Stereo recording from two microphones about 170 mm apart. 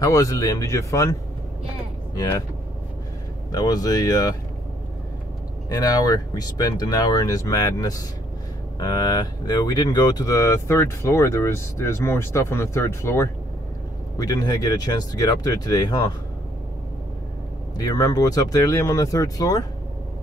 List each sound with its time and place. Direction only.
0.0 s speech: 20° left (ahead or behind)
3.5 s speech: 25° left (ahead or behind)
5.7 s speech: 25° left (ahead or behind)
17.7 s speech: 20° left (ahead or behind)